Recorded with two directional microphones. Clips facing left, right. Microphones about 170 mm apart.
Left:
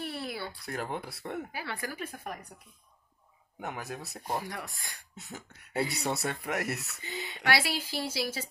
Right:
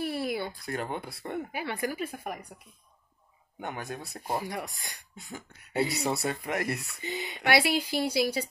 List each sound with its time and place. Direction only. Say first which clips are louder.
0.0 s a sound: right 6 dB; 10° right (ahead or behind)
0.7 s speech: right 2 dB; centre (ahead or behind)
1.5 s speech: right 6 dB; 20° right (ahead or behind)
3.6 s speech: right 2 dB; centre (ahead or behind)
4.2 s speech: right 3 dB; 10° right (ahead or behind)
5.1 s speech: right 2 dB; centre (ahead or behind)
7.0 s speech: right 4 dB; 20° right (ahead or behind)